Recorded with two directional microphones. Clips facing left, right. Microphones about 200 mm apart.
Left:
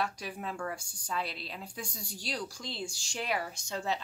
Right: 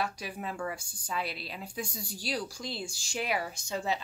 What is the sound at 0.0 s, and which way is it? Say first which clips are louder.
A woman's voice: right 1 dB; 5° right (ahead or behind).